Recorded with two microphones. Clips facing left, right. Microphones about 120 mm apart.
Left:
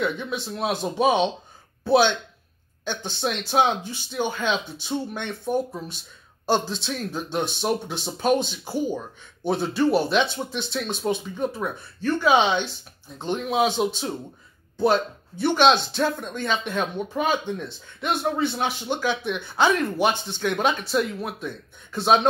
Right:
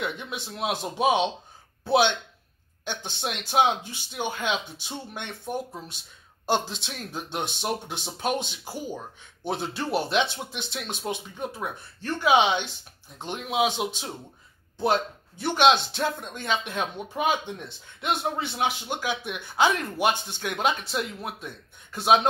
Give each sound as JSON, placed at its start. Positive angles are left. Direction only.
{"t": 0.0, "sound": "speech", "side_deg": -15}
{"t": 6.4, "sound": "speech", "side_deg": -15}